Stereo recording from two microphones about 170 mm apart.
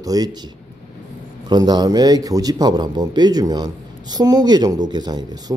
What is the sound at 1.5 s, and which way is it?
A man's voice, 25° right (ahead or behind).